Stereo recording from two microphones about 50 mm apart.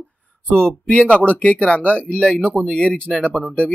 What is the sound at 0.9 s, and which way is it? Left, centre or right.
Speech, centre.